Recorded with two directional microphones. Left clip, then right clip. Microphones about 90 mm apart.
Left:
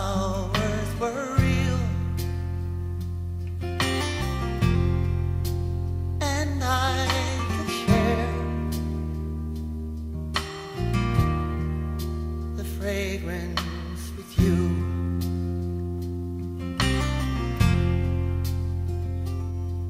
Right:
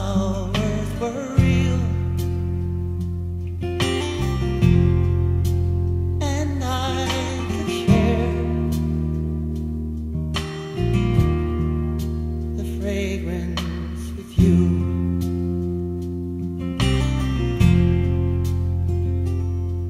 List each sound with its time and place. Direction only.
0.0 s music: 25° right (ahead or behind)
3.6 s music: 30° right (ahead or behind)
6.2 s music: 25° right (ahead or behind)
10.3 s music: 25° right (ahead or behind)
12.8 s music: 25° right (ahead or behind)
16.6 s music: 35° right (ahead or behind)